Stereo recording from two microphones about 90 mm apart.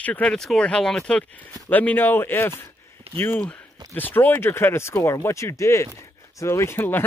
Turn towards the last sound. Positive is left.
turn(degrees=25)  # may be behind; listen again after turning